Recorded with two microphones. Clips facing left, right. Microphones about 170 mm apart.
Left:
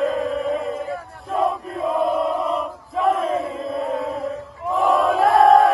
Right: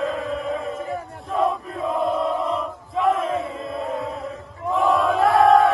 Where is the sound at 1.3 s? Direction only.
Centre (ahead or behind).